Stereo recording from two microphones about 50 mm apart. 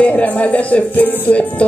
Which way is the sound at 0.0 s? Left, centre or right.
Left.